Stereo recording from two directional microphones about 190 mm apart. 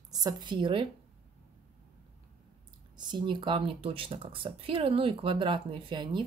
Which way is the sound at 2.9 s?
25° right (ahead or behind).